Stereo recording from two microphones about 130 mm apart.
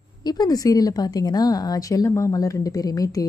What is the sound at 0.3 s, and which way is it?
A woman's voice, 30° left (ahead or behind).